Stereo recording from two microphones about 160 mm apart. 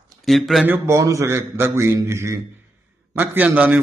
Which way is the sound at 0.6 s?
20° right (ahead or behind).